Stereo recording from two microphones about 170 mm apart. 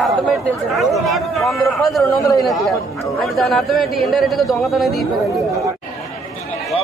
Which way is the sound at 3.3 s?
Centre (ahead or behind).